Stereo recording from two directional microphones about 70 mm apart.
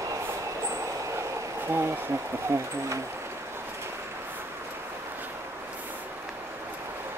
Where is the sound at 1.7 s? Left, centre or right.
Right.